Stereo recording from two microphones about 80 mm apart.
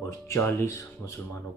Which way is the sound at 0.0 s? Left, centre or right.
Left.